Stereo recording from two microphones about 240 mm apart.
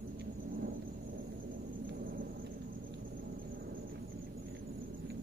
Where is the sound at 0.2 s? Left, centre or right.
Right.